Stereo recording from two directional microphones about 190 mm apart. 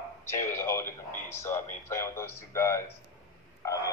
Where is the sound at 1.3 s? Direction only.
15° left (ahead or behind).